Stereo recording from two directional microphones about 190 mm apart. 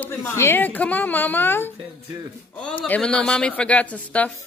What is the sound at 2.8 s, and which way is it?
A woman's voice, 5° left (ahead or behind).